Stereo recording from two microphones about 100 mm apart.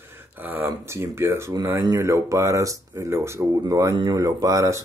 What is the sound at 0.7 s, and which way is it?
Speech, 30° right (ahead or behind).